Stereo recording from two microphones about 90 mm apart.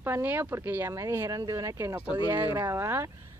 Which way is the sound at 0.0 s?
25° right (ahead or behind).